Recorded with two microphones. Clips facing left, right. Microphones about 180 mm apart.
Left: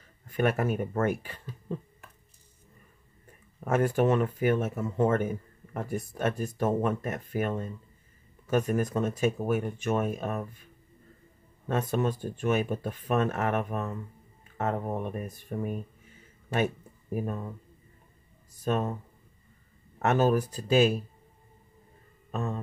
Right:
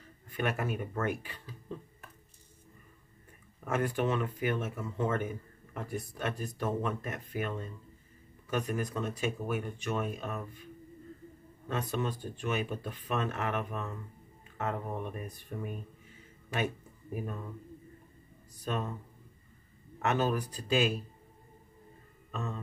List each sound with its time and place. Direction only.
0.4 s speech: 45° left (ahead or behind)
3.6 s speech: 45° left (ahead or behind)
11.7 s speech: 45° left (ahead or behind)
18.6 s speech: 45° left (ahead or behind)
20.0 s speech: 45° left (ahead or behind)
22.3 s a sound: 40° left (ahead or behind)